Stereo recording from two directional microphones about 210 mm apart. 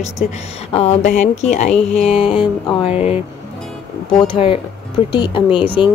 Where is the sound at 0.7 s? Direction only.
30° left (ahead or behind).